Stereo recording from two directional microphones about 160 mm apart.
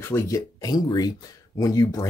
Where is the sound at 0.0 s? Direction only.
15° left (ahead or behind).